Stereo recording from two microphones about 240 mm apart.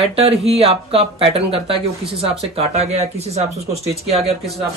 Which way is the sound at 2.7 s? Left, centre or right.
Right.